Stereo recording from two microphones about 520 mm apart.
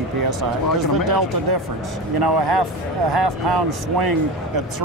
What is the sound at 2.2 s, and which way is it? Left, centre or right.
A man's voice, right.